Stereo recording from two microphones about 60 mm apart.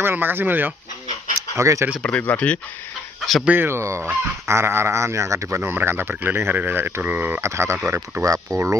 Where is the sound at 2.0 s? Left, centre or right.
Left.